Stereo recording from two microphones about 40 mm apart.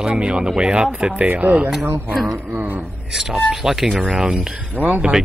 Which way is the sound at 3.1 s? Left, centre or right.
Centre.